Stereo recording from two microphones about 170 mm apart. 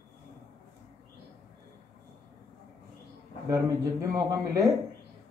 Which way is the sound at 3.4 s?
20° right (ahead or behind).